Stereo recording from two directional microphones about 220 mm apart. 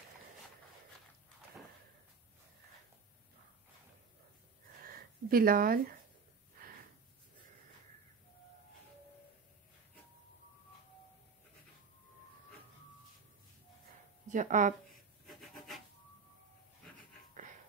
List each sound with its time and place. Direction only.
4.8 s speech: 40° right (ahead or behind)
14.2 s speech: 35° right (ahead or behind)
15.2 s rub: centre (ahead or behind)